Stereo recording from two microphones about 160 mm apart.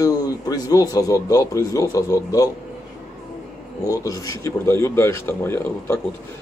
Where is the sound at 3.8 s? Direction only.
20° left (ahead or behind).